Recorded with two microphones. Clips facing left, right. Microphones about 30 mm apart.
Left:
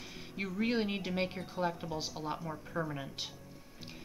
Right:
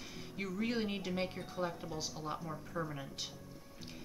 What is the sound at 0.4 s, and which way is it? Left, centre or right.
Speech, left.